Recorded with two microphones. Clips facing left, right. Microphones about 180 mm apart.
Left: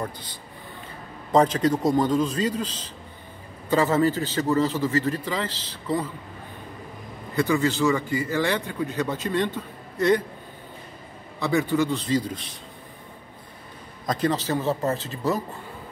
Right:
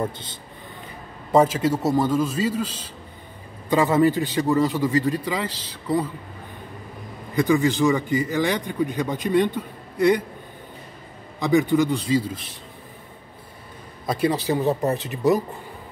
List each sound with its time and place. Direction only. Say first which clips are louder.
0.0 s a man's voice: right 5 dB; 25° right (ahead or behind)
1.3 s a man's voice: right 1 dB; 5° right (ahead or behind)
7.3 s a man's voice: right 3 dB; 15° right (ahead or behind)
11.3 s a man's voice: right 4 dB; 15° right (ahead or behind)
14.0 s a man's voice: right 2 dB; 10° right (ahead or behind)